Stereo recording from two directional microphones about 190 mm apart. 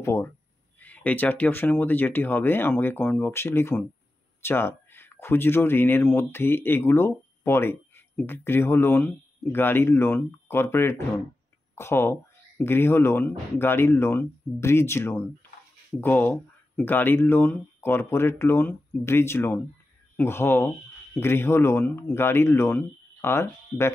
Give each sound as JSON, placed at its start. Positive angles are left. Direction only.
{"t": 0.0, "sound": "speech", "side_deg": 15}